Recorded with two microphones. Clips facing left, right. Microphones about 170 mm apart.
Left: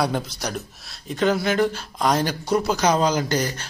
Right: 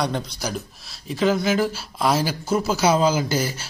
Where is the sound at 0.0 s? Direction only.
Centre (ahead or behind).